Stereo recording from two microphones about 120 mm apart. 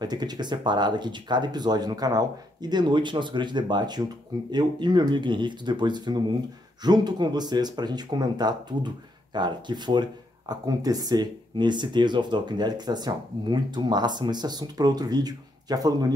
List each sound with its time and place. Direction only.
0.0 s speech: 35° right (ahead or behind)